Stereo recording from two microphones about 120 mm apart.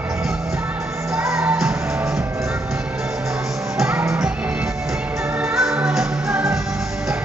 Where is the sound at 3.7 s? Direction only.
5° right (ahead or behind).